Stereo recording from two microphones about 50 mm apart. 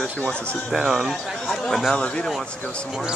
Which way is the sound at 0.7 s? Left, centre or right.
Centre.